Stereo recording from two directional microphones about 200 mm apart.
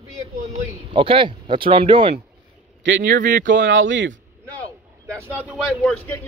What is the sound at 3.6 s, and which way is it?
Speech, 70° right (ahead or behind).